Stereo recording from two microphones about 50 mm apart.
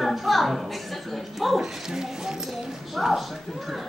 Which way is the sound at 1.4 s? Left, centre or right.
Centre.